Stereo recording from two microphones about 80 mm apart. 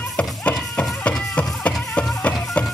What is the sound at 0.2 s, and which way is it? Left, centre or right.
Music, centre.